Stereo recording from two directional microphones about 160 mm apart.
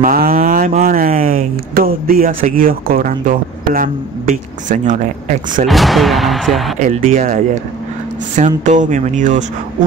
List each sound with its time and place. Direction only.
0.0 s speech: 65° right (ahead or behind)
5.7 s speech: centre (ahead or behind)
7.0 s speech: 55° right (ahead or behind)